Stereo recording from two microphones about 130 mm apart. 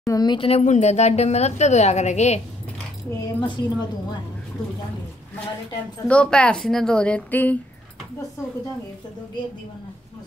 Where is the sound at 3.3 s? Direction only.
35° left (ahead or behind).